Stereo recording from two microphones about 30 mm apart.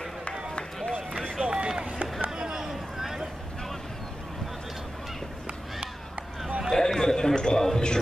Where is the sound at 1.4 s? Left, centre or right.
Right.